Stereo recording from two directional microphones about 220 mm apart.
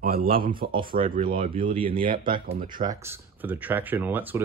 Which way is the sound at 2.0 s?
40° right (ahead or behind).